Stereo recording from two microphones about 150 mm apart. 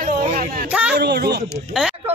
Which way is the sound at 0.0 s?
75° right (ahead or behind).